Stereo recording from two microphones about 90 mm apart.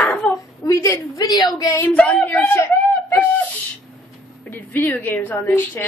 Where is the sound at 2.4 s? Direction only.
30° left (ahead or behind).